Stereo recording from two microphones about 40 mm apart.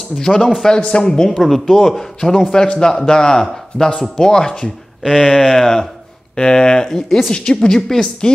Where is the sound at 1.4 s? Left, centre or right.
Centre.